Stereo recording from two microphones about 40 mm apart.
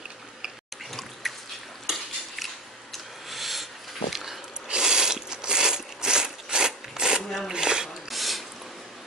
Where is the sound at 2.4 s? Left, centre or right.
Centre.